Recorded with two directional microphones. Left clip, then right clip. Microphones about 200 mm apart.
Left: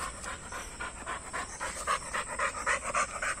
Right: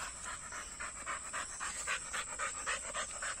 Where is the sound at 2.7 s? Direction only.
30° left (ahead or behind).